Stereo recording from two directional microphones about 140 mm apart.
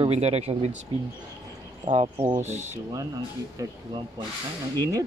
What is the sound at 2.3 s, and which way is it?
Speech, 15° right (ahead or behind).